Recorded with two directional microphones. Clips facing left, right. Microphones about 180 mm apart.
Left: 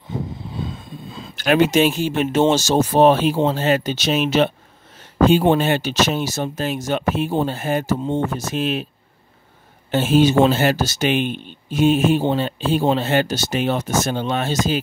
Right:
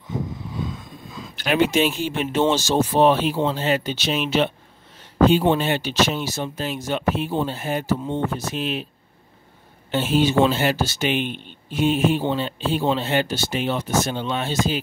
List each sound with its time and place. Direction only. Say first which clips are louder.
0.5 s a sound: left 1 dB; 30° left (ahead or behind)
1.3 s speech: left 4 dB; 45° left (ahead or behind)
5.5 s speech: left 3 dB; 45° left (ahead or behind)
9.8 s speech: left 4 dB; 45° left (ahead or behind)